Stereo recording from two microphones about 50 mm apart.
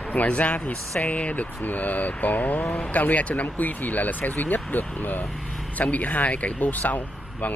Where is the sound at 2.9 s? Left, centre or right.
Left.